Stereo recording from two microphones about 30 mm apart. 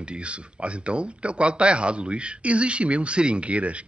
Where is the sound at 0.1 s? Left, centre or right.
Right.